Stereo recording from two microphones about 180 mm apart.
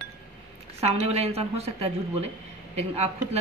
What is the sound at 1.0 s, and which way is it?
Speech, 35° right (ahead or behind).